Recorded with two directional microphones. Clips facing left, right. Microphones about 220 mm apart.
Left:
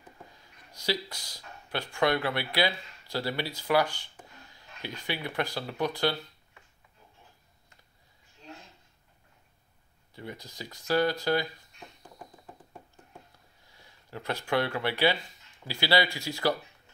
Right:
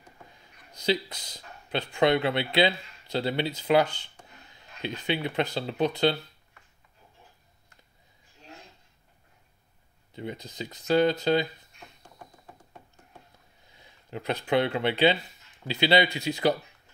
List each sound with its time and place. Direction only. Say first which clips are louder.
0.7 s speech: right 5 dB; 20° right (ahead or behind)
10.1 s speech: right 5 dB; 20° right (ahead or behind)
13.7 s speech: right 4 dB; 20° right (ahead or behind)